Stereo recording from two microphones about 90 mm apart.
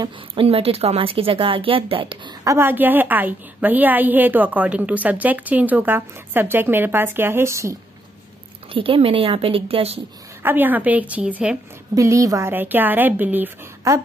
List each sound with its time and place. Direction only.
0.3 s a woman's voice: 90° right
2.4 s a woman's voice: 25° right (ahead or behind)
8.7 s a woman's voice: 90° right
10.4 s a woman's voice: 20° right (ahead or behind)
11.9 s a woman's voice: 40° right (ahead or behind)
12.4 s a woman's voice: 20° right (ahead or behind)
13.9 s a woman's voice: 35° right (ahead or behind)